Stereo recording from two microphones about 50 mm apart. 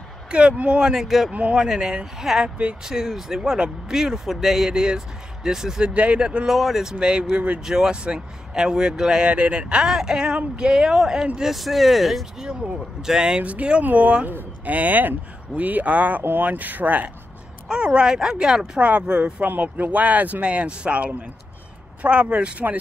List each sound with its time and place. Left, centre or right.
0.3 s speech: right
1.0 s speech: centre
1.3 s speech: right
5.9 s speech: right
6.5 s speech: centre; by 7.6 s right
7.6 s speech: centre
13.0 s speech: centre
13.4 s speech: right
17.6 s speech: centre
19.4 s speech: right